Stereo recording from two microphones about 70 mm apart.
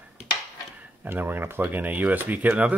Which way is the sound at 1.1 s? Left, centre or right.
Right.